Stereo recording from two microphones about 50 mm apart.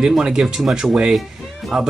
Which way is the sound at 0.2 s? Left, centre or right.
Centre.